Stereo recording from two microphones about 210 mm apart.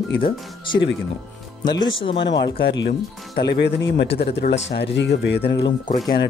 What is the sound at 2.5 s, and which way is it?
Speech, 55° left (ahead or behind).